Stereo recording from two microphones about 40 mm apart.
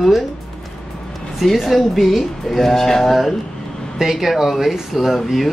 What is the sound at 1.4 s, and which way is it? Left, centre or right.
Speech, centre.